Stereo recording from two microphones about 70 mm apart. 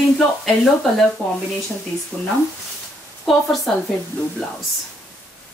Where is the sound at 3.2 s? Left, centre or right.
Centre.